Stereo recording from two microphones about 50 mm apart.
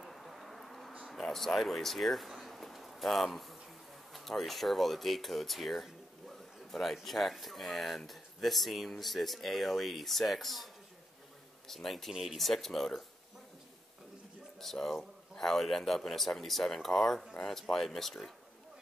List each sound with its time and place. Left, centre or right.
0.0 s a sound: centre
1.3 s speech: centre
12.1 s speech: centre
12.4 s speech: centre
14.6 s speech: centre